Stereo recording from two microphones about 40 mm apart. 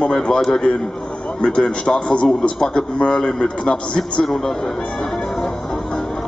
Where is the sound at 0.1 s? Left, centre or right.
Left.